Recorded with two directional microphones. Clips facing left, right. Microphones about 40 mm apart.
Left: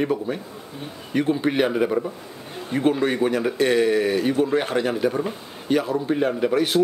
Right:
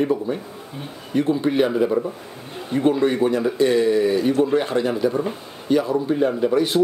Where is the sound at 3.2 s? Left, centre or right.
Left.